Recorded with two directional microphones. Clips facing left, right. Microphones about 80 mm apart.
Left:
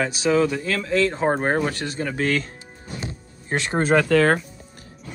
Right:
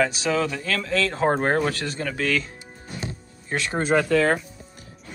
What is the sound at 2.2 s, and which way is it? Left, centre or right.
Speech, left.